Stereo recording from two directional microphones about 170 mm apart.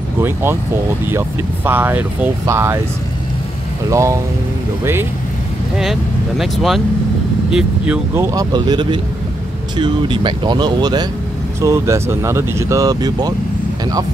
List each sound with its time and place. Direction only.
0.2 s speech: 15° right (ahead or behind)
3.9 s speech: 15° right (ahead or behind)
5.8 s speech: centre (ahead or behind)
8.3 s speech: 20° right (ahead or behind)